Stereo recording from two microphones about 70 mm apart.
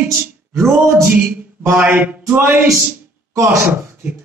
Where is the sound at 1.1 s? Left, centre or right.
Centre.